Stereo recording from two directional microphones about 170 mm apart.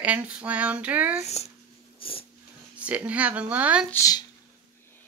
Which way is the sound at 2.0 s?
30° left (ahead or behind).